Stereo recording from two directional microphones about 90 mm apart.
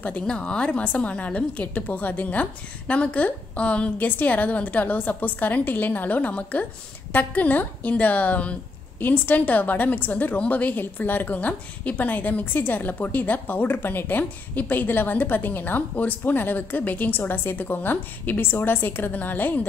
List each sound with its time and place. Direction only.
0.0 s a woman's voice: 15° left (ahead or behind)